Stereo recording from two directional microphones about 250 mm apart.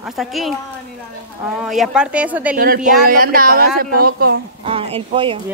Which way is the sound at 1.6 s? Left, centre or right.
Centre.